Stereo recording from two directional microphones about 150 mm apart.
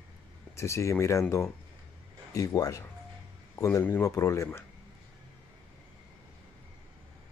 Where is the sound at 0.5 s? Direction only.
20° left (ahead or behind).